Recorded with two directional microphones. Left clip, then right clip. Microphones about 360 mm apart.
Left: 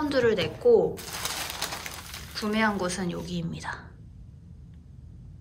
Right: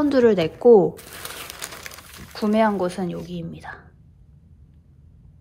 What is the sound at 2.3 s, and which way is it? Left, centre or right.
A woman's voice, centre.